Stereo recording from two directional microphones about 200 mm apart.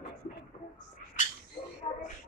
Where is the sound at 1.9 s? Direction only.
30° left (ahead or behind).